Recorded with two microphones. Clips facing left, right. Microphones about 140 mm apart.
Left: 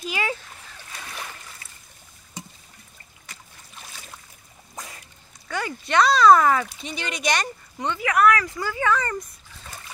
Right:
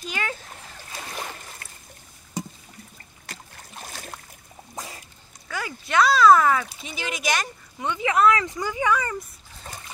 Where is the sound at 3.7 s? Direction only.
50° right (ahead or behind).